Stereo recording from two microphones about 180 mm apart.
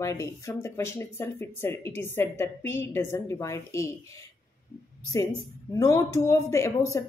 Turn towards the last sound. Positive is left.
turn(degrees=15)  # may be behind; listen again after turning